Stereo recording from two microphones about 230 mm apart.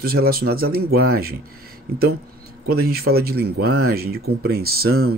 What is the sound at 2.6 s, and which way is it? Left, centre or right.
Speech, right.